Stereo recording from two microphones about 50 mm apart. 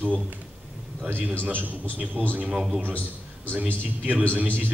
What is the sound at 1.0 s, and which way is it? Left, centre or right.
Speech, right.